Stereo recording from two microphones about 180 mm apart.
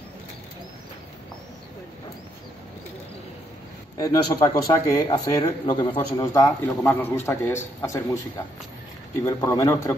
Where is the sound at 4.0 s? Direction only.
20° left (ahead or behind).